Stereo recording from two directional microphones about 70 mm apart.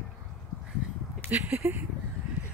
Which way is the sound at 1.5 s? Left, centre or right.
Right.